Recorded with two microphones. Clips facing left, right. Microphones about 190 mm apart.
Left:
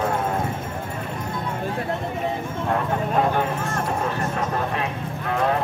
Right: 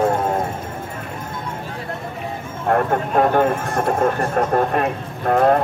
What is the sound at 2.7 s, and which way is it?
Vehicle, 55° right (ahead or behind).